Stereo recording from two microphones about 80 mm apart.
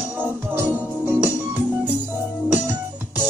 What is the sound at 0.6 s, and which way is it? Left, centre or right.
Music, right.